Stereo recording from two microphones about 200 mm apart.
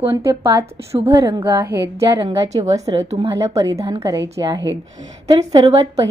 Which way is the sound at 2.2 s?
30° right (ahead or behind).